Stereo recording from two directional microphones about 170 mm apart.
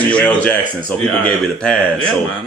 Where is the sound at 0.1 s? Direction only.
10° left (ahead or behind).